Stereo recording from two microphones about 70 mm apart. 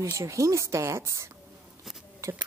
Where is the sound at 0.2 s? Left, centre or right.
Right.